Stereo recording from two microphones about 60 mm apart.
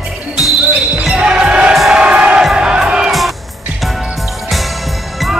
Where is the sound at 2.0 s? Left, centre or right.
Centre.